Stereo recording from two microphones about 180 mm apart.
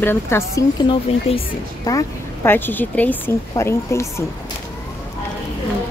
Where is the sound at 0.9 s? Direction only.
30° left (ahead or behind).